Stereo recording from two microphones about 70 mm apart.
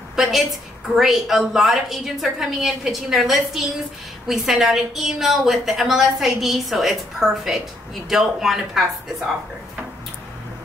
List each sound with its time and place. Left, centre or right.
0.1 s a woman's voice: centre